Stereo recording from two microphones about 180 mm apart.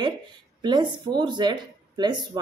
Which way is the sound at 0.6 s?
25° right (ahead or behind).